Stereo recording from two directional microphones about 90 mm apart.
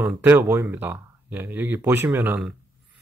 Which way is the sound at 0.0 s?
20° right (ahead or behind).